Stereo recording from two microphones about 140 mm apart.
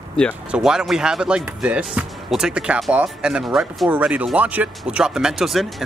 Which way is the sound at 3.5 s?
10° right (ahead or behind).